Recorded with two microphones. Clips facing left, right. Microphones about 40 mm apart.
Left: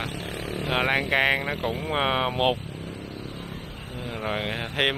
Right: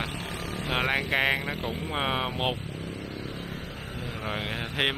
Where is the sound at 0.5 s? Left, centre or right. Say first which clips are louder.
Left 3 dB; left.